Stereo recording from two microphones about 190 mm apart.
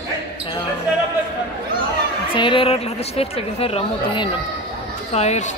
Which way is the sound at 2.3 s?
25° left (ahead or behind).